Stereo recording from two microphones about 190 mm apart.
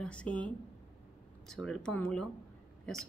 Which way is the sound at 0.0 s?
5° left (ahead or behind).